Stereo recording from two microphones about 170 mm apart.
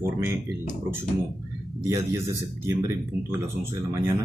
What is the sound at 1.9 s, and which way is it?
Speech, 15° right (ahead or behind).